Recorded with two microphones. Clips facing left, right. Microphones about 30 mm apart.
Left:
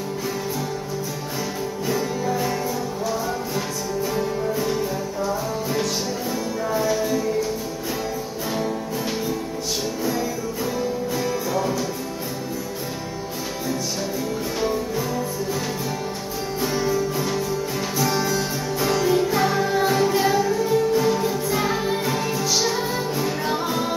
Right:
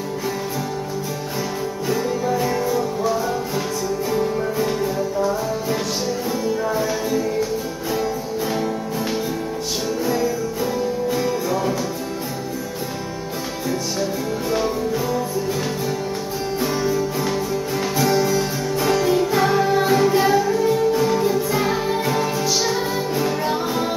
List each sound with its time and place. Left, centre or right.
1.9 s music: centre
4.1 s music: centre
6.7 s music: centre
10.0 s music: centre
14.6 s music: centre
16.6 s music: centre
17.2 s music: centre